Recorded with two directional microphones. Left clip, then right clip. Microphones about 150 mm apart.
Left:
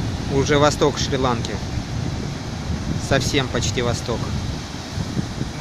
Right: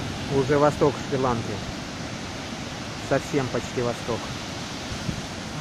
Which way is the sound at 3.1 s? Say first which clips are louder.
Left 4 dB; 15° left (ahead or behind).